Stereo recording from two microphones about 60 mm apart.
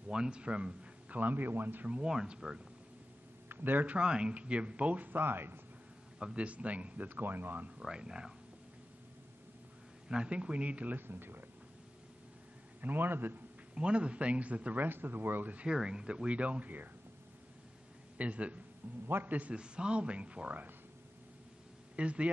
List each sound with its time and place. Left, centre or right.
0.1 s a man's voice: centre
1.2 s a man's voice: right
2.0 s speech: centre
3.4 s speech: right
6.1 s speech: centre; by 7.7 s right
7.8 s speech: centre
10.0 s speech: centre; by 11.4 s right
12.8 s a man's voice: right
13.7 s speech: centre; by 15.5 s right
15.5 s speech: centre
18.1 s a man's voice: right
21.9 s speech: centre